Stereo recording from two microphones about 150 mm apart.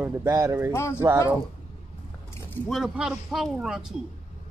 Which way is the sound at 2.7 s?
5° right (ahead or behind).